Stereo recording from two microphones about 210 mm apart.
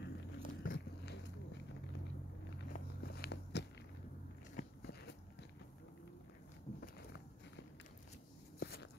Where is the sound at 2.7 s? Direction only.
45° left (ahead or behind).